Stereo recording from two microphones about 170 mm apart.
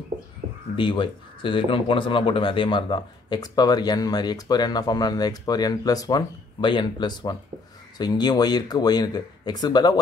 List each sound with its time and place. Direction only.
0.7 s speech: 30° left (ahead or behind)